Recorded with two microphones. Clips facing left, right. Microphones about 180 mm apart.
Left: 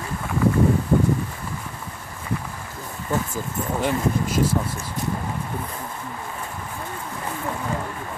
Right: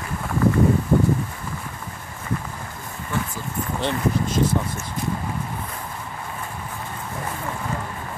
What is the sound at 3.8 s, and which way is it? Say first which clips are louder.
Speech: even; 10° left (ahead or behind).